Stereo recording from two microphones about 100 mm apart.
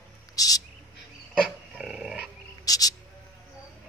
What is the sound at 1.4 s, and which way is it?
Dog, 5° right (ahead or behind).